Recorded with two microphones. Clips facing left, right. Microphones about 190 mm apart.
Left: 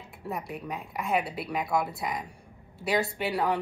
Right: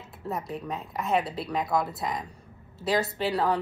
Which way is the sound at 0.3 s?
25° right (ahead or behind).